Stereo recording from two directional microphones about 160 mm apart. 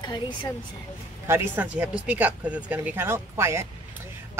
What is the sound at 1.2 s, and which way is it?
Speech, 15° right (ahead or behind).